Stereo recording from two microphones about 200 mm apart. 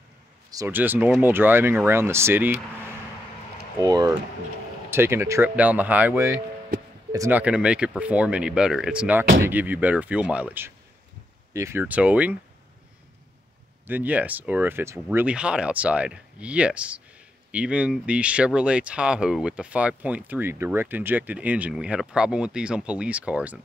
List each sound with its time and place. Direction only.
0.5 s speech: 15° right (ahead or behind)
13.8 s speech: 10° right (ahead or behind)